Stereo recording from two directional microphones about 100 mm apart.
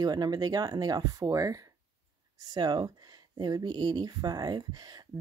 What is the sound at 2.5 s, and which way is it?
Speech, 45° right (ahead or behind).